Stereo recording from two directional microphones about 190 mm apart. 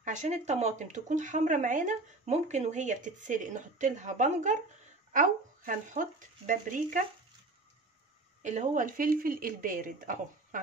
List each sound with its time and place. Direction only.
0.0 s speech: 40° right (ahead or behind)
8.4 s speech: 40° right (ahead or behind)